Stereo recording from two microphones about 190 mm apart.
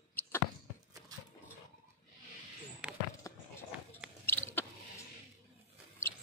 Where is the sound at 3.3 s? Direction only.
15° left (ahead or behind).